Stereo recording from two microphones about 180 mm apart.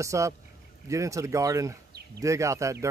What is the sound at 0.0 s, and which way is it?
Speech, 15° right (ahead or behind).